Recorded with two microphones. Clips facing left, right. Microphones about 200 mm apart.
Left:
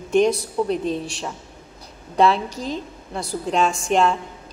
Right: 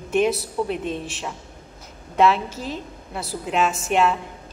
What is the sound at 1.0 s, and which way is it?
Speech, centre (ahead or behind).